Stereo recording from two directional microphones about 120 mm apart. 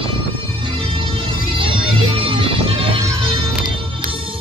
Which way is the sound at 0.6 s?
45° right (ahead or behind).